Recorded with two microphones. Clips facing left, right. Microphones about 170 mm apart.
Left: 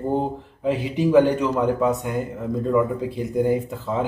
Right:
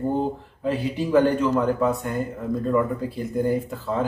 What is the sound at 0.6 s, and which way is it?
A man's voice, 20° left (ahead or behind).